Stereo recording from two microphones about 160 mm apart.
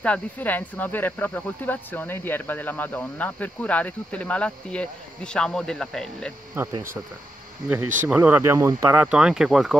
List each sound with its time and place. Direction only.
0.0 s speech: 10° left (ahead or behind)
6.5 s speech: 15° right (ahead or behind)
8.1 s speech: 10° right (ahead or behind)